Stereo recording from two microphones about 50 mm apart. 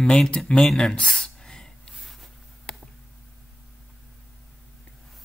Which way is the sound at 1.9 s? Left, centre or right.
Centre.